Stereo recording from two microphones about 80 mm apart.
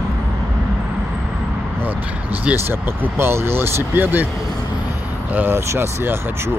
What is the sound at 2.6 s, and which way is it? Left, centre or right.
Speech, right.